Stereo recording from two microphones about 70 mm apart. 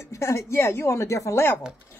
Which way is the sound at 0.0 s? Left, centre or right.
Left.